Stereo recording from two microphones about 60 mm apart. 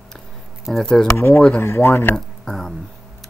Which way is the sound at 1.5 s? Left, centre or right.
Left.